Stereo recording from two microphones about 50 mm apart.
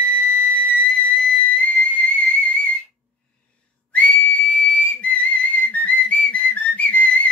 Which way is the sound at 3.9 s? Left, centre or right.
Left.